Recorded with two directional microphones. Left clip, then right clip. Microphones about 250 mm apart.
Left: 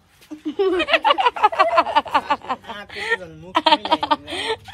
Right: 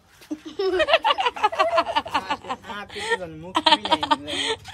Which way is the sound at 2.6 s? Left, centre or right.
Right.